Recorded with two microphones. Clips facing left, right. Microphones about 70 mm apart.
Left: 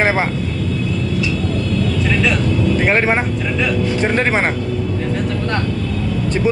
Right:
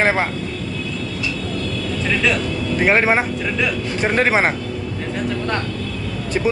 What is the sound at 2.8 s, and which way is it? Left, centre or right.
Speech, centre.